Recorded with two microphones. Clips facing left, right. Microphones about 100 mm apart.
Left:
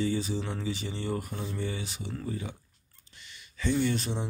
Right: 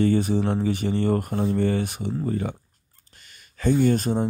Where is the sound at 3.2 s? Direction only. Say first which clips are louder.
Right 3 dB; 45° right (ahead or behind).